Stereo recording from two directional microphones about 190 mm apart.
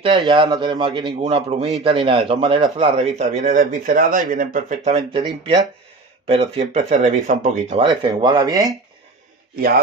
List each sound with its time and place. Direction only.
0.3 s speech: 25° right (ahead or behind)
7.8 s speech: 20° right (ahead or behind)